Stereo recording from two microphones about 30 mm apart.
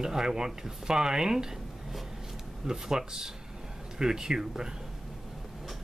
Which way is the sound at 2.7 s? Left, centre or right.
Right.